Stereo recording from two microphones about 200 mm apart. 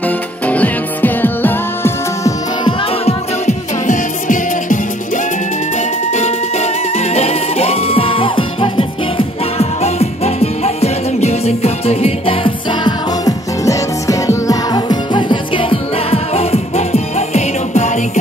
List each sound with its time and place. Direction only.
0.0 s music: 10° left (ahead or behind)
2.6 s music: 30° left (ahead or behind)